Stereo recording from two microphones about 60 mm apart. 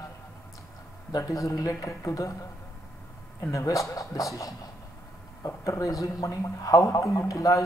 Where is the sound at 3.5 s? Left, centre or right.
Left.